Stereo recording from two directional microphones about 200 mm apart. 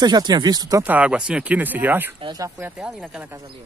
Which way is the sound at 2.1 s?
20° right (ahead or behind).